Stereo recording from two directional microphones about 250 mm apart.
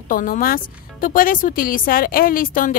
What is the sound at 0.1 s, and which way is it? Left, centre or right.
A woman's voice, left.